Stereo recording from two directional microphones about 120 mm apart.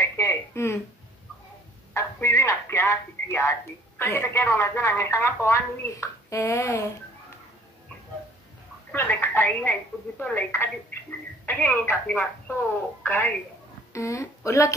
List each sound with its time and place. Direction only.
0.0 s a sound: 25° left (ahead or behind)
2.0 s telephone: 25° left (ahead or behind)
4.0 s a woman's voice: 20° left (ahead or behind)
8.9 s speech: 20° left (ahead or behind)
13.0 s a woman's voice: 20° left (ahead or behind)